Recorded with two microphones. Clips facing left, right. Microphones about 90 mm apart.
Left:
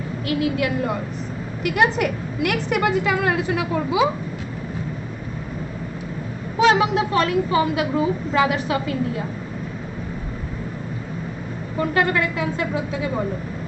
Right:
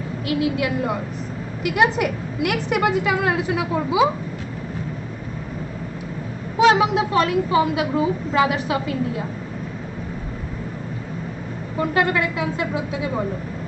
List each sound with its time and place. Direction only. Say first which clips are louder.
0.2 s a woman's voice: even; 10° right (ahead or behind)
3.7 s a woman's voice: right 2 dB; 15° right (ahead or behind)
6.6 s a woman's voice: right 1 dB; 10° right (ahead or behind)
11.8 s a woman's voice: even; 10° right (ahead or behind)